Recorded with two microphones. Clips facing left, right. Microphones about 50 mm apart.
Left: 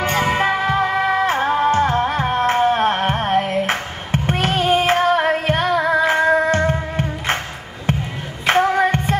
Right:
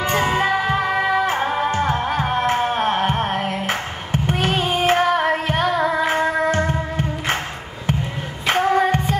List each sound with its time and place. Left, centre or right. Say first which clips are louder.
0.0 s music: left 1 dB; left
8.5 s music: left 2 dB; left